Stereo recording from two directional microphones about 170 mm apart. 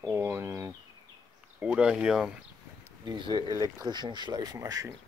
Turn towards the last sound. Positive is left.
turn(degrees=-20)  # may be behind; listen again after turning